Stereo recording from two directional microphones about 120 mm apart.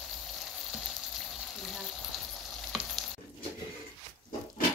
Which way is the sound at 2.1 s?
Centre (ahead or behind).